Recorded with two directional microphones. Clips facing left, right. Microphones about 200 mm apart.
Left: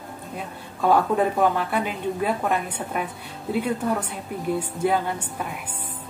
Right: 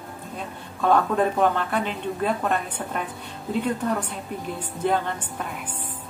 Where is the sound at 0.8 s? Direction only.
10° left (ahead or behind).